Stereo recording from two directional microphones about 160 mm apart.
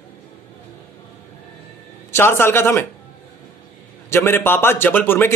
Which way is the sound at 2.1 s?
15° left (ahead or behind).